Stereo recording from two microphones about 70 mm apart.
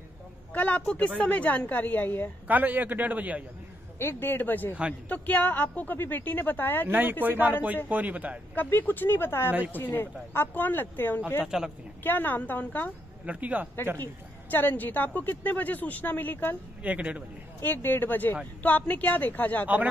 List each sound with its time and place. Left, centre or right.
0.5 s a woman's voice: left
2.4 s a man's voice: right
4.0 s a woman's voice: left
6.9 s a man's voice: right
8.5 s a woman's voice: left
11.4 s speech: centre
12.0 s a woman's voice: left
13.2 s a man's voice: right
13.9 s a woman's voice: left
16.8 s a man's voice: centre
17.6 s a woman's voice: left